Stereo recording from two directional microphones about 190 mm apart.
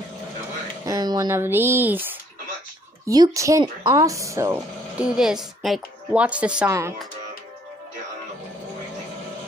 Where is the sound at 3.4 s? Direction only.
15° right (ahead or behind).